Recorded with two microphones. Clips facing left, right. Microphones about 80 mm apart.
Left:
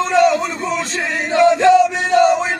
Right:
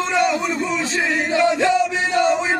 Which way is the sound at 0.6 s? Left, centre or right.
Left.